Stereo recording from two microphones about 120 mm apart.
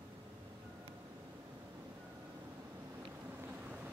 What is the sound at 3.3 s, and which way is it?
Boat, 15° right (ahead or behind).